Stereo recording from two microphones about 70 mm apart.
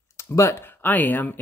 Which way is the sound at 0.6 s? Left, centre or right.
Left.